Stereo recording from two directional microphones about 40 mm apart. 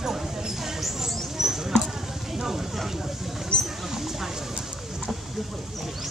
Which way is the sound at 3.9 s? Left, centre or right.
Centre.